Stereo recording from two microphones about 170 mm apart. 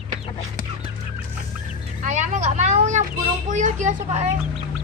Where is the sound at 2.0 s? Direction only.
45° right (ahead or behind).